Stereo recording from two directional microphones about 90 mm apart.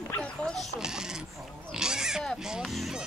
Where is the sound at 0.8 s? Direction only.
5° right (ahead or behind).